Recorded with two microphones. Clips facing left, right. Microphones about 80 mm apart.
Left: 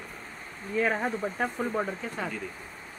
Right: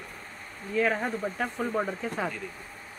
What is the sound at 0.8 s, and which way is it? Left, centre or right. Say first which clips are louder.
A man's voice: even; centre.